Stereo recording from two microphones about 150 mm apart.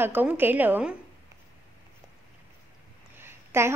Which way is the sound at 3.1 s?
15° right (ahead or behind).